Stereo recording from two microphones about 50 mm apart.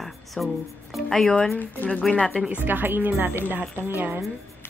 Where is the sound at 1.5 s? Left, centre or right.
Left.